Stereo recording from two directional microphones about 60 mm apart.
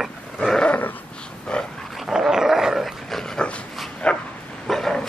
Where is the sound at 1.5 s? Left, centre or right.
Centre.